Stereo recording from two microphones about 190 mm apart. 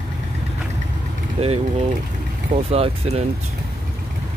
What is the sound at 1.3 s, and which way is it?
Speech, 30° right (ahead or behind).